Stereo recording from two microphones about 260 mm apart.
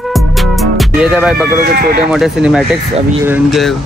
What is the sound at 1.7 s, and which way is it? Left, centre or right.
Speech, right.